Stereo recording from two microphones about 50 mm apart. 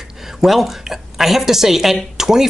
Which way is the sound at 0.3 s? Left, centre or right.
Centre.